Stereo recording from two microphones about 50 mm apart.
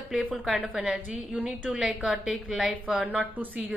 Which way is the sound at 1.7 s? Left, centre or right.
Centre.